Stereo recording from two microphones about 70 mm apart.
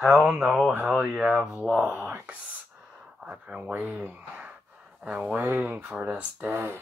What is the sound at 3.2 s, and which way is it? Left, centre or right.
Speech, centre.